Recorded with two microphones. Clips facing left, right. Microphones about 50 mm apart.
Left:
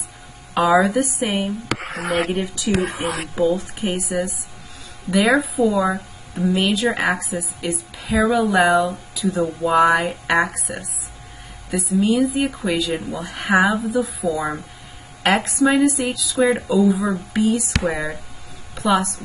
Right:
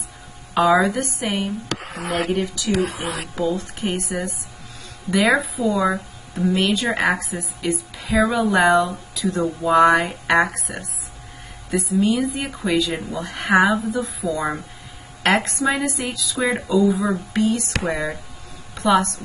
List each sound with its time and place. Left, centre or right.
0.6 s a woman's voice: centre
1.8 s speech: left
2.3 s speech: centre
3.9 s a woman's voice: centre